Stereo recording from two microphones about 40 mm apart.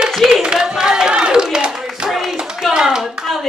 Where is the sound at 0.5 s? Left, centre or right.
Centre.